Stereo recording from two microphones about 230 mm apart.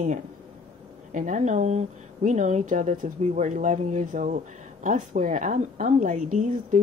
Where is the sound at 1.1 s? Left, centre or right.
Right.